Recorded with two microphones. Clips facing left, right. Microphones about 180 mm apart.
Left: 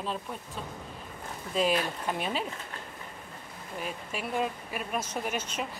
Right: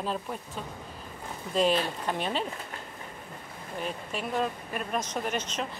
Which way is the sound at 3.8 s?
5° left (ahead or behind).